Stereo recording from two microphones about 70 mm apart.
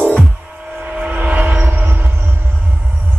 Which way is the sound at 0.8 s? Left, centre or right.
Right.